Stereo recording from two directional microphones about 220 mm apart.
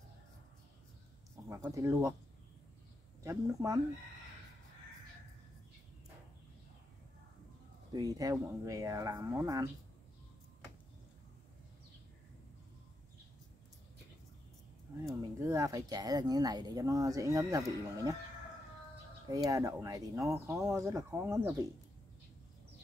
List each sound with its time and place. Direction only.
1.5 s speech: 15° right (ahead or behind)
3.3 s speech: 15° right (ahead or behind)
7.9 s speech: 15° right (ahead or behind)
15.0 s speech: 15° right (ahead or behind)
19.3 s speech: 15° right (ahead or behind)